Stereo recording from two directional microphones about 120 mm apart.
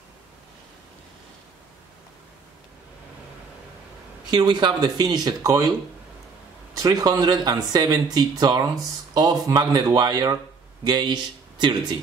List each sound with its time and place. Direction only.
4.3 s speech: 40° right (ahead or behind)
6.8 s speech: 30° right (ahead or behind)